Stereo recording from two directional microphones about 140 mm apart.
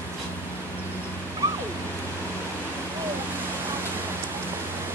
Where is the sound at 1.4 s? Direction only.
20° right (ahead or behind).